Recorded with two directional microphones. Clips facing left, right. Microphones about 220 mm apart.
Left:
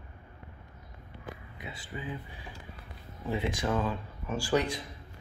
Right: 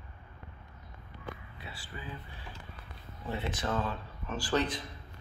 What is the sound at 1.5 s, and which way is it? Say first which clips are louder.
Speech: left 4 dB; 20° left (ahead or behind).